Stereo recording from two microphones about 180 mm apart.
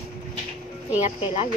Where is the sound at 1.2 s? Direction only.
35° left (ahead or behind).